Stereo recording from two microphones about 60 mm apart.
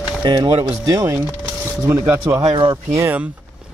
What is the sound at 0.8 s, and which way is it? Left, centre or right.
Speech, right.